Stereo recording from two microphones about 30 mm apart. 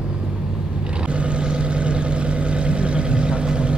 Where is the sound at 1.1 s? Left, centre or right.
Right.